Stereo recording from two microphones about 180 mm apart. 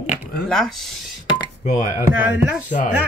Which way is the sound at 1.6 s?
40° left (ahead or behind).